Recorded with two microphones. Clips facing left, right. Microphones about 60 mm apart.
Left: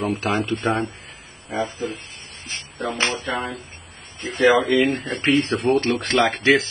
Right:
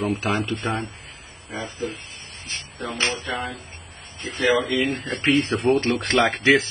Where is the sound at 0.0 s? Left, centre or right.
Centre.